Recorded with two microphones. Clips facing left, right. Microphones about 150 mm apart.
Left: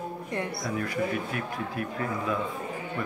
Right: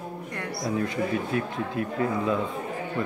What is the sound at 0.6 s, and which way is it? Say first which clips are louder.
A man's voice: right 5 dB; 25° right (ahead or behind).